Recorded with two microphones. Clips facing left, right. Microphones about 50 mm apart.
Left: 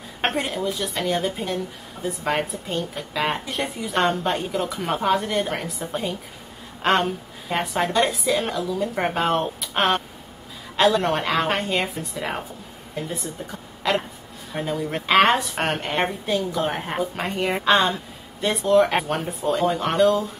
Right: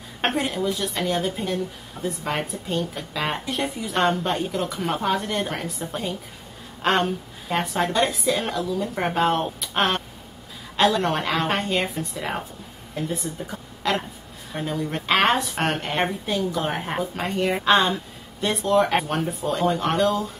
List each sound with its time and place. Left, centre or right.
0.2 s a woman's voice: centre